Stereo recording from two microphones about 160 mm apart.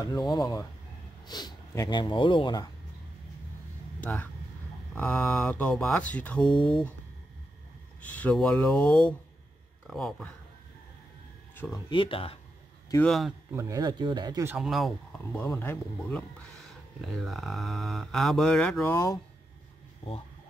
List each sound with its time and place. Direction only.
0.0 s speech: 25° left (ahead or behind)
4.0 s speech: 10° left (ahead or behind)
8.0 s speech: 10° left (ahead or behind)
9.8 s mantra: 5° left (ahead or behind)
11.7 s speech: 30° left (ahead or behind)
13.0 s mantra: centre (ahead or behind)
13.5 s speech: 20° right (ahead or behind)
14.5 s speech: centre (ahead or behind)
17.1 s mantra: centre (ahead or behind)
18.9 s speech: 15° left (ahead or behind)